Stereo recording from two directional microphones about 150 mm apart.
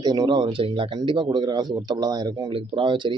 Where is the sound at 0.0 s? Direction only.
25° right (ahead or behind).